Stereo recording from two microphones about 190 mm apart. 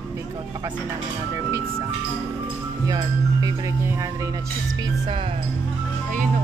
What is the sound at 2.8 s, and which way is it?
Speech, 20° right (ahead or behind).